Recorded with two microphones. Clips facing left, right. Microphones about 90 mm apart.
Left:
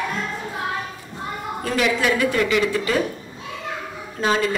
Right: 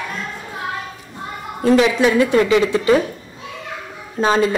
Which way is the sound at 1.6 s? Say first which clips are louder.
Right 8 dB; 25° right (ahead or behind).